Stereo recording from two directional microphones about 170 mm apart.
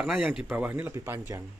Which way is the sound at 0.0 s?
5° right (ahead or behind).